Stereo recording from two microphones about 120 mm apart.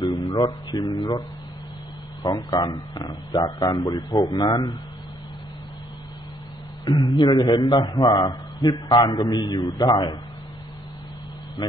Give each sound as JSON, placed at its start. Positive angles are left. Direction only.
{"t": 0.0, "sound": "speech", "side_deg": 35}
{"t": 2.2, "sound": "a man's voice", "side_deg": 35}
{"t": 6.9, "sound": "a man's voice", "side_deg": 35}